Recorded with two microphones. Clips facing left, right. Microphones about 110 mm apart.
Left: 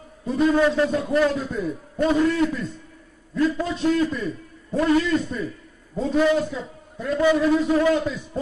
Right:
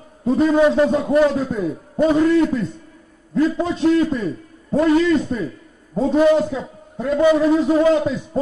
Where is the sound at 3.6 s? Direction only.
50° right (ahead or behind).